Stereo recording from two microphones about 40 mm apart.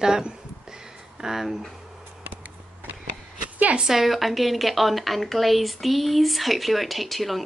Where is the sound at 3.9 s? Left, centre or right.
Centre.